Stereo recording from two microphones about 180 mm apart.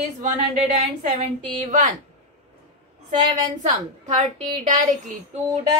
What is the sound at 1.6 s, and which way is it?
Speech, 45° right (ahead or behind).